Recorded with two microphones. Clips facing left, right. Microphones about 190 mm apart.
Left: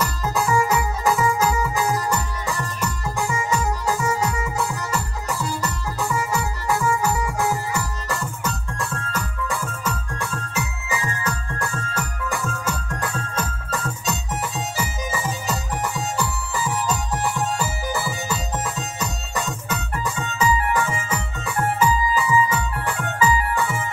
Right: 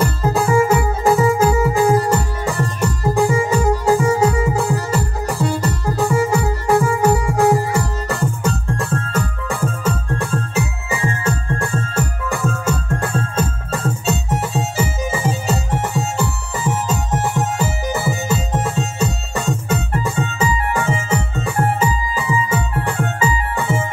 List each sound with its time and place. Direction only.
0.0 s music: 30° right (ahead or behind)
0.6 s music: 50° right (ahead or behind)
1.0 s music: 30° right (ahead or behind)
12.4 s music: 55° right (ahead or behind)
12.7 s music: 30° right (ahead or behind)